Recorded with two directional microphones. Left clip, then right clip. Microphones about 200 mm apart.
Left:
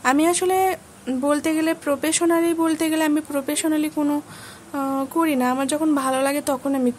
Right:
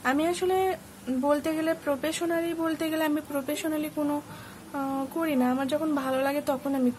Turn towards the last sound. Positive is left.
turn(degrees=45)  # may be behind; listen again after turning